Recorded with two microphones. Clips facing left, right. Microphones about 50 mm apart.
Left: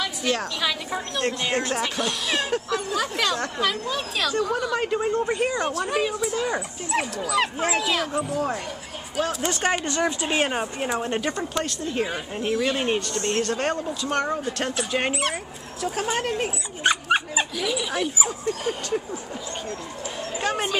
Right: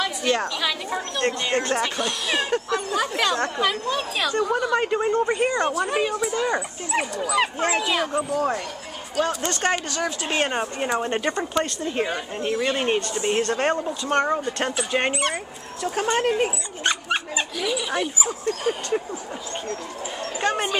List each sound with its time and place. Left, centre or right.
0.0 s a woman's voice: centre
9.8 s speech: left
10.2 s a woman's voice: centre
12.1 s speech: centre
12.5 s a woman's voice: centre
16.8 s dog: centre
17.6 s a woman's voice: centre
20.3 s speech: centre